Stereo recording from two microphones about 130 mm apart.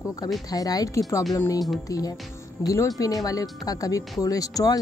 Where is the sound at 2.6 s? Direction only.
25° left (ahead or behind).